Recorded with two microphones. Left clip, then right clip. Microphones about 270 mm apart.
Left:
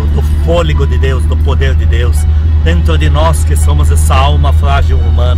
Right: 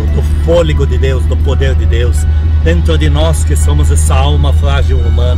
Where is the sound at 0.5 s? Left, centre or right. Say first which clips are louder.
Right 3 dB; centre.